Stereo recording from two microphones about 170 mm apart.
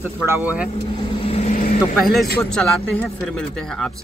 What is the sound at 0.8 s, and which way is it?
Vehicle, 35° left (ahead or behind).